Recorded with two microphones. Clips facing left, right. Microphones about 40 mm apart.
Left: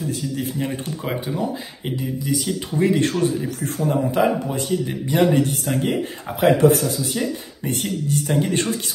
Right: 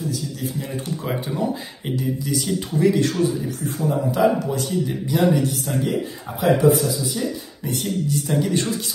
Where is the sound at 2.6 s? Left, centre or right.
Left.